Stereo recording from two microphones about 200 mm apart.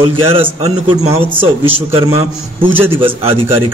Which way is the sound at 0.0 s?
25° right (ahead or behind).